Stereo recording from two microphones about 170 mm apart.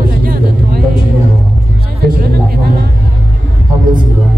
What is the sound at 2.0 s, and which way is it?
Music, 60° right (ahead or behind).